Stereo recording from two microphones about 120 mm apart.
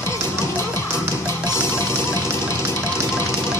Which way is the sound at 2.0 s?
20° left (ahead or behind).